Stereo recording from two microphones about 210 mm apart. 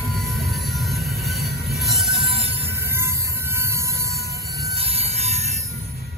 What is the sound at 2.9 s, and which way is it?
Train, 10° right (ahead or behind).